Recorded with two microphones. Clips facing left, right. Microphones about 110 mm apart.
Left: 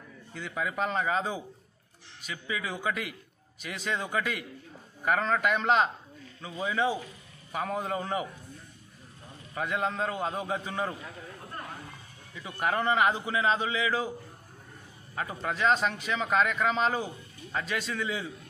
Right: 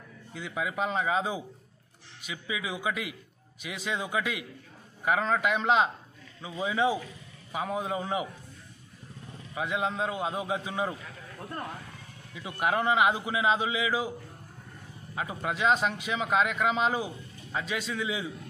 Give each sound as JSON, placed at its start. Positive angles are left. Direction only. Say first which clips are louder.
{"t": 0.3, "sound": "a man's voice", "louder": "even", "side_deg": -5}
{"t": 6.4, "sound": "a man's voice", "louder": "right 1 dB", "side_deg": -15}
{"t": 9.6, "sound": "a man's voice", "louder": "even", "side_deg": -5}
{"t": 12.4, "sound": "a man's voice", "louder": "right 1 dB", "side_deg": -10}
{"t": 15.1, "sound": "a man's voice", "louder": "even", "side_deg": -10}